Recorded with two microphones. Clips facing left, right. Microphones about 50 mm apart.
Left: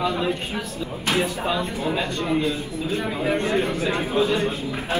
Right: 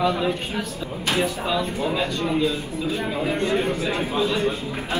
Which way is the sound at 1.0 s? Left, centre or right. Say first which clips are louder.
Even; left.